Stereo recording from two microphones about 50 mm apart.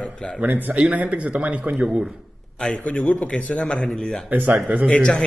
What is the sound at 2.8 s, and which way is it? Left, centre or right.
A man's voice, left.